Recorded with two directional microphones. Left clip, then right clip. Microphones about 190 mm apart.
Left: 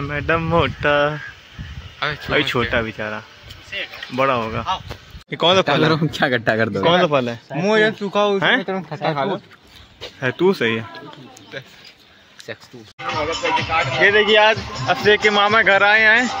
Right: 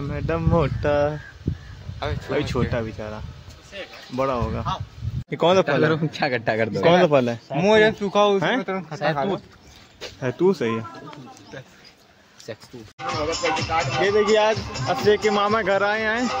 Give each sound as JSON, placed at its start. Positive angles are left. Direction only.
{"t": 0.0, "sound": "speech", "side_deg": 0}
{"t": 2.3, "sound": "speech", "side_deg": 0}
{"t": 5.3, "sound": "speech", "side_deg": -10}
{"t": 5.7, "sound": "a man's voice", "side_deg": 60}
{"t": 6.9, "sound": "speech", "side_deg": -20}
{"t": 8.6, "sound": "speech", "side_deg": 35}
{"t": 9.9, "sound": "speech", "side_deg": -5}
{"t": 12.5, "sound": "speech", "side_deg": -10}
{"t": 13.0, "sound": "speech", "side_deg": -45}
{"t": 13.9, "sound": "speech", "side_deg": -10}
{"t": 14.7, "sound": "speech", "side_deg": 25}
{"t": 15.0, "sound": "speech", "side_deg": -5}